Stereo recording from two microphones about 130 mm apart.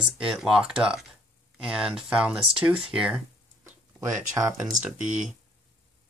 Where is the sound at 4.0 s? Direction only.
25° right (ahead or behind).